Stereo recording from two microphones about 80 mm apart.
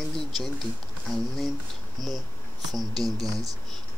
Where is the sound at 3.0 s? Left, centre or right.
Right.